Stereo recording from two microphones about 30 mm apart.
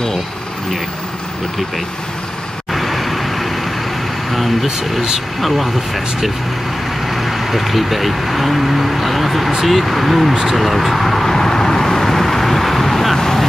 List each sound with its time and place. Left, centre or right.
2.7 s vehicle: centre
4.3 s speech: centre
7.1 s speech: centre
10.4 s vehicle: centre